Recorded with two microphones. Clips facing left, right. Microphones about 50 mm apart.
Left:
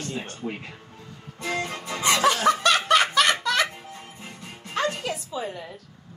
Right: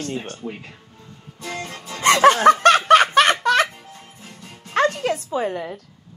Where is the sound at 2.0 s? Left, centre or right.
Right.